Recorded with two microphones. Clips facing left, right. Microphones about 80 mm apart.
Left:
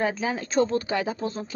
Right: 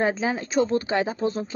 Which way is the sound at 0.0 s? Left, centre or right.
Right.